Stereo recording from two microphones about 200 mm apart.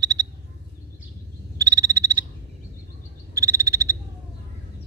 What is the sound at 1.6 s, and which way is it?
Frog, 15° right (ahead or behind).